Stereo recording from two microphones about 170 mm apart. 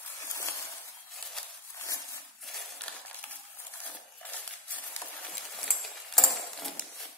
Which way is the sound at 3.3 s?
10° left (ahead or behind).